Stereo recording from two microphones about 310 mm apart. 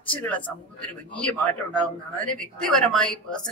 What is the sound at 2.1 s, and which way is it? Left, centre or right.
Speech, centre.